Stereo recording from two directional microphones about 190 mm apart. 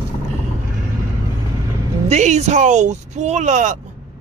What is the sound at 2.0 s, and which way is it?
Speech, 35° right (ahead or behind).